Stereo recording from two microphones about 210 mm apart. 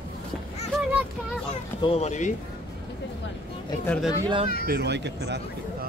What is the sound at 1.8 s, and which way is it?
Speech, 30° left (ahead or behind).